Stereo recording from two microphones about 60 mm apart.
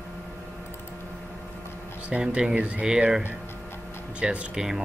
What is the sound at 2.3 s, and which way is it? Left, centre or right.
Speech, right.